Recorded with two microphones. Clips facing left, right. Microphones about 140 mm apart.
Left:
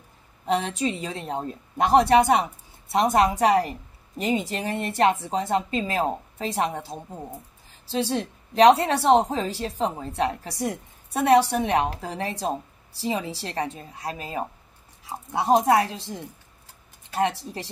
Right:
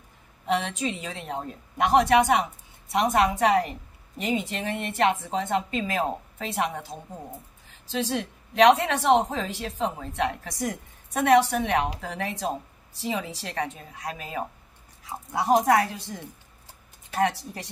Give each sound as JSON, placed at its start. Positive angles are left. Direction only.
{"t": 0.5, "sound": "a woman's voice", "side_deg": 35}